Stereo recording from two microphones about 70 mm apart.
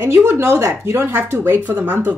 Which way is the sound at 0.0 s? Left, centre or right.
Right.